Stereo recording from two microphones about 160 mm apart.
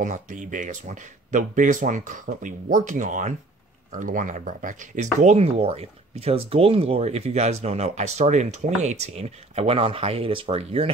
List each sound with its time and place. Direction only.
0.0 s speech: 50° right (ahead or behind)